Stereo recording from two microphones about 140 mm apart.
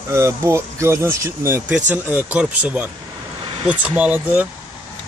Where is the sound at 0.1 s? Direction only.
20° right (ahead or behind).